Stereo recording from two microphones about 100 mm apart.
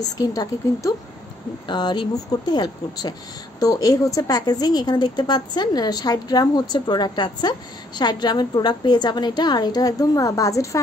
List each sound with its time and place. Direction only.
0.0 s speech: 40° left (ahead or behind)
1.7 s speech: 50° left (ahead or behind); by 10.8 s 30° left (ahead or behind)